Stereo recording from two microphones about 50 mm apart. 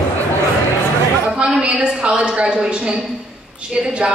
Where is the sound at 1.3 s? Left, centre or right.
Centre.